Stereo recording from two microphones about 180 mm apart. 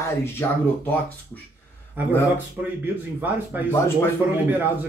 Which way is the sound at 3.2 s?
10° right (ahead or behind).